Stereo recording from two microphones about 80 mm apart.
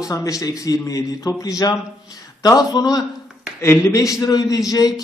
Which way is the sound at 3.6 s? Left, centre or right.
Left.